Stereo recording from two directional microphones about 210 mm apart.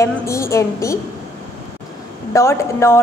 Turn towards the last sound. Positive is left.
turn(degrees=15)  # may be behind; listen again after turning